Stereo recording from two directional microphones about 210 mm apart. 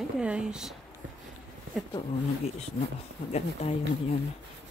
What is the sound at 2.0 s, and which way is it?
Speech, 25° left (ahead or behind).